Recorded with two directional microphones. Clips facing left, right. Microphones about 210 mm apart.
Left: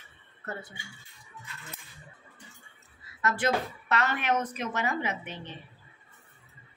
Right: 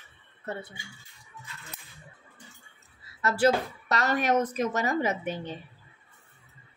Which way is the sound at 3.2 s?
35° right (ahead or behind).